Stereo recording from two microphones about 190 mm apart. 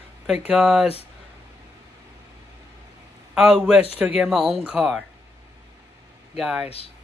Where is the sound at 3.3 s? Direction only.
Centre (ahead or behind).